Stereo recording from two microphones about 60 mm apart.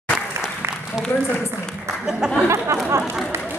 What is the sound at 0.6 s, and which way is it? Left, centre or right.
Applause, right.